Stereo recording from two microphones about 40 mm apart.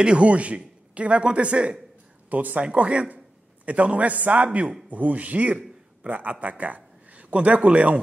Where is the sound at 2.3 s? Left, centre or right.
Right.